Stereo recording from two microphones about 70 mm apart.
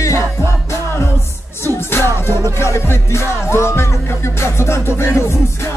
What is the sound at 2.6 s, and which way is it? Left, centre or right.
Music, left.